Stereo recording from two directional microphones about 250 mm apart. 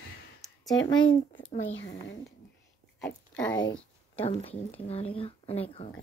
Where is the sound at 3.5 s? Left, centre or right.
Centre.